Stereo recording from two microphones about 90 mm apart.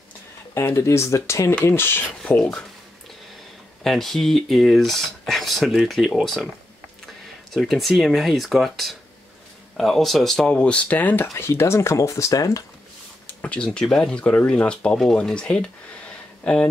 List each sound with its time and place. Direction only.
0.6 s speech: 30° left (ahead or behind)
2.3 s speech: 15° left (ahead or behind)
3.8 s speech: 5° left (ahead or behind)
7.5 s speech: centre (ahead or behind); by 12.6 s 40° left (ahead or behind)
13.3 s a sound: 15° left (ahead or behind)
13.7 s speech: 5° left (ahead or behind)